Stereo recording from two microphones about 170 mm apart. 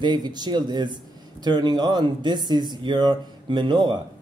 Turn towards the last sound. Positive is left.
turn(degrees=-25)  # may be behind; listen again after turning